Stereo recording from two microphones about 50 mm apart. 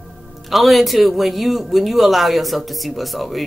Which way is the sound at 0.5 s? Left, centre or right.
Centre.